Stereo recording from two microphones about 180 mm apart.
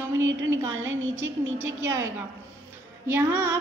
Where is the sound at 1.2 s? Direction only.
15° right (ahead or behind).